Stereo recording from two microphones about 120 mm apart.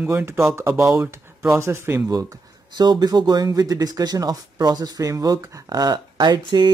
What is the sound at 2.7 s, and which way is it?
Speech, 35° right (ahead or behind).